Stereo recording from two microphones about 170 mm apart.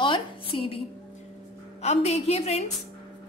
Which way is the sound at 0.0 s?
30° left (ahead or behind).